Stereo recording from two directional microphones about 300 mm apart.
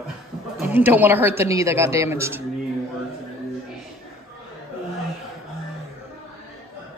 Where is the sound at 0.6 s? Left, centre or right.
Centre.